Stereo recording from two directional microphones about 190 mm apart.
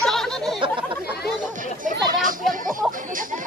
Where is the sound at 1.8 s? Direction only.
45° right (ahead or behind).